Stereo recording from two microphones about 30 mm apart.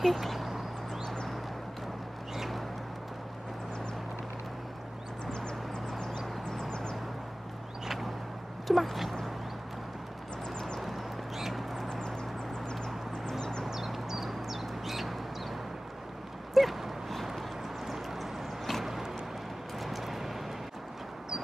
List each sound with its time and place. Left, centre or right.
0.0 s duck: centre
6.7 s vehicle: left
8.6 s speech: centre
10.8 s a sound: centre
13.4 s a sound: left
13.7 s bird: centre
16.5 s dog: centre
17.9 s a sound: centre
19.8 s vehicle: centre